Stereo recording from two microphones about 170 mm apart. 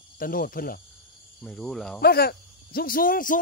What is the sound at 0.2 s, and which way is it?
Speech, 55° left (ahead or behind).